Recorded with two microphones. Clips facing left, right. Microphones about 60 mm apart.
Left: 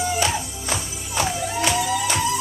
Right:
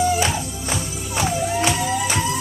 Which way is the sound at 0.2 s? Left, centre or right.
Centre.